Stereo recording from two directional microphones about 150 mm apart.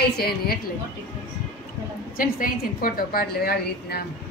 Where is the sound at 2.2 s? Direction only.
70° left (ahead or behind); by 4.0 s 90° left.